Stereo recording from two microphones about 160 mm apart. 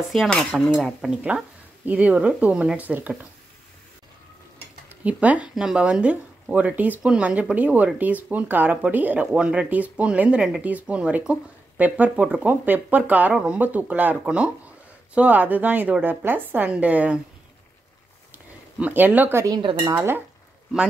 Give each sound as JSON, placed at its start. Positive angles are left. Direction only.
{"t": 0.1, "sound": "speech", "side_deg": 5}
{"t": 4.8, "sound": "speech", "side_deg": -10}
{"t": 18.3, "sound": "a sound", "side_deg": -10}
{"t": 19.5, "sound": "speech", "side_deg": -30}
{"t": 19.8, "sound": "speech", "side_deg": -15}